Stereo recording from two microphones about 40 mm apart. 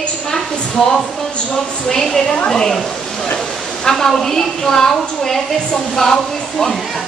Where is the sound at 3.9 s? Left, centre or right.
Centre.